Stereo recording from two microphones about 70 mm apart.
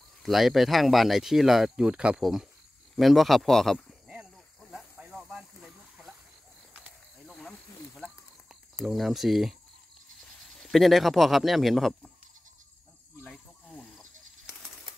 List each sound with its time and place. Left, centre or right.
0.2 s speech: centre
3.0 s speech: centre
5.2 s a sound: centre
8.7 s speech: centre
13.7 s snake: centre